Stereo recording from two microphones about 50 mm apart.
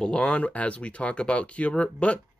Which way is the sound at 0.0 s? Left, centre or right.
Centre.